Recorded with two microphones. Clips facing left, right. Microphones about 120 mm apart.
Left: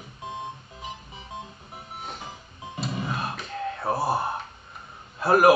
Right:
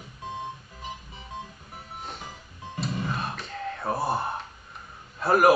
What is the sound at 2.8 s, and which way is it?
Music, 20° left (ahead or behind).